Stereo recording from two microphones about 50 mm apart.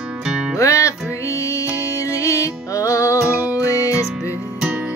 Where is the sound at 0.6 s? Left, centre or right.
Left.